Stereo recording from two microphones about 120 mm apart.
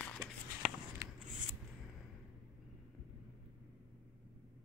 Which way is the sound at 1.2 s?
90° right.